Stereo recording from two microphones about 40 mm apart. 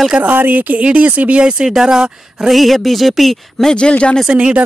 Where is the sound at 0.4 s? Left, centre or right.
Right.